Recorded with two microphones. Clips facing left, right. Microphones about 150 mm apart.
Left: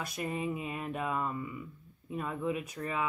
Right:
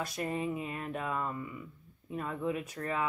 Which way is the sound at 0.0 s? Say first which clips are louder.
Right 1 dB; 15° left (ahead or behind).